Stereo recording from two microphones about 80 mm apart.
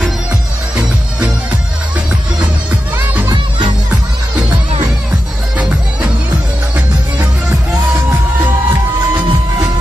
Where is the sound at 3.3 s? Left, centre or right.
Right.